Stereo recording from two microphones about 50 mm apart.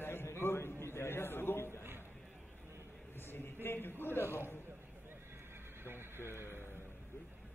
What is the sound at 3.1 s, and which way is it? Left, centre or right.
Speech, left.